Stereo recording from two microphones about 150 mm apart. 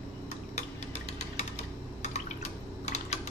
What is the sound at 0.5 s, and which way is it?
Typing, 45° left (ahead or behind).